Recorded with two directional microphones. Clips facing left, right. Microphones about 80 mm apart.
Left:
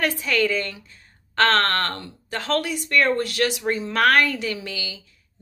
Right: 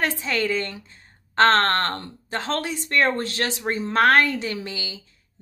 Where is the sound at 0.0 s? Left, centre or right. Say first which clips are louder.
Left 2 dB; right.